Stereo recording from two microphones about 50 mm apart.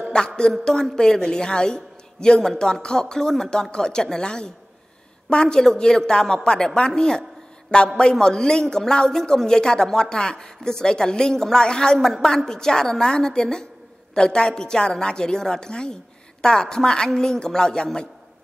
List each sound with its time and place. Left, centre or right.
0.4 s speech: centre